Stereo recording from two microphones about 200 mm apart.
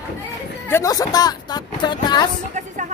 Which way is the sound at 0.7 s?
15° left (ahead or behind).